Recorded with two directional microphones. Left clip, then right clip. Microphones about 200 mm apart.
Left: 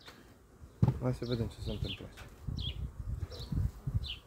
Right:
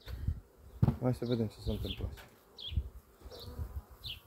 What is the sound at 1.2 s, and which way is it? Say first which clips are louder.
Speech: right 2 dB; 20° right (ahead or behind).